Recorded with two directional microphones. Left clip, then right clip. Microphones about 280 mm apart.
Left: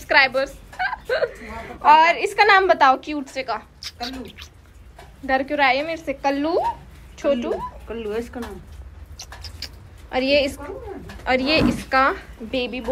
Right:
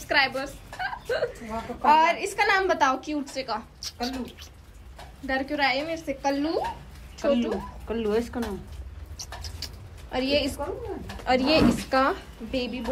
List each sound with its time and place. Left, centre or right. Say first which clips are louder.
0.1 s a woman's voice: left 7 dB; centre
7.9 s speech: right 3 dB; right
9.2 s a sound: left 2 dB; centre
10.1 s a woman's voice: left 6 dB; centre